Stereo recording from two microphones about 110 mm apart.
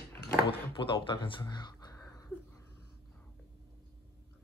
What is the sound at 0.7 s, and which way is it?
Speech, 50° left (ahead or behind).